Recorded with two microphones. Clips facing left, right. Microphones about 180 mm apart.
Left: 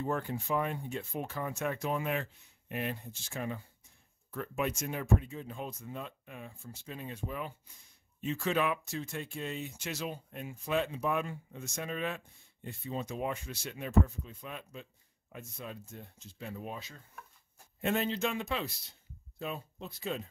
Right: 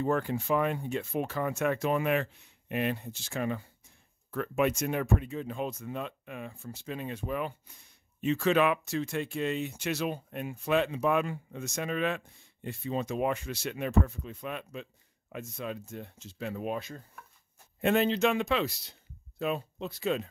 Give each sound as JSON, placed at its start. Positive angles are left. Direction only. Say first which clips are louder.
{"t": 0.0, "sound": "speech", "louder": "right 5 dB", "side_deg": -85}
{"t": 8.2, "sound": "speech", "louder": "right 6 dB", "side_deg": -85}
{"t": 15.3, "sound": "speech", "louder": "right 7 dB", "side_deg": -90}